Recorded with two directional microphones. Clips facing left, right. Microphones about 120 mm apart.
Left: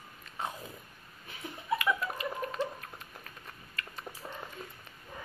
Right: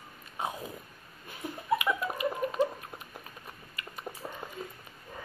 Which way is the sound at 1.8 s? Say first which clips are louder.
Right 1 dB; 15° right (ahead or behind).